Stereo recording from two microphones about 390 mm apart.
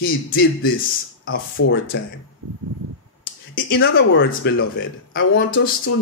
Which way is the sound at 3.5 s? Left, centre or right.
Left.